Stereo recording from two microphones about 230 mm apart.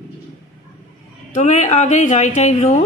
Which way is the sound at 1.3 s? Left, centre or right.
Left.